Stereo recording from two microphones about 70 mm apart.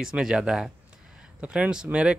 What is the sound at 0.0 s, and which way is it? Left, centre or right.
Speech, centre.